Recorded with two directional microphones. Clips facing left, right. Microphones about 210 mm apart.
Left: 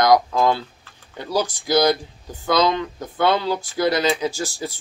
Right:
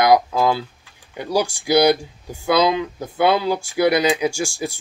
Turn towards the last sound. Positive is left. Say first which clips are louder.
# right 3 dB
turn(degrees=-15)  # may be behind; listen again after turning